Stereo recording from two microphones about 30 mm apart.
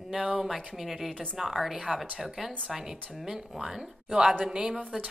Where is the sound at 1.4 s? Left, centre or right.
Centre.